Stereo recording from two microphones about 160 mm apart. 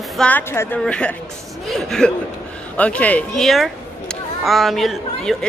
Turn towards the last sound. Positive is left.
turn(degrees=0)  # may be behind; listen again after turning